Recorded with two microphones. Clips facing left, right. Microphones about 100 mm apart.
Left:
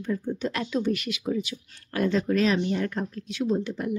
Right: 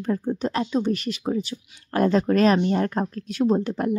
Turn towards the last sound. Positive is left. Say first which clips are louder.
# right 5 dB
turn(degrees=-50)  # may be behind; listen again after turning